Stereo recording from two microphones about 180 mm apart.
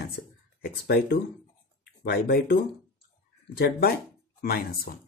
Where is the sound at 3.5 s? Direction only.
60° left (ahead or behind).